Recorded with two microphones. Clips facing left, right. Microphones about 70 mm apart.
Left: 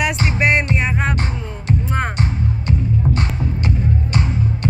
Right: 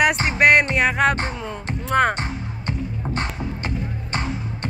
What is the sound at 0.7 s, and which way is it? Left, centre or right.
Music, right.